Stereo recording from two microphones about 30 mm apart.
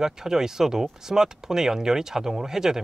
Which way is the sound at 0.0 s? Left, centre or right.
Centre.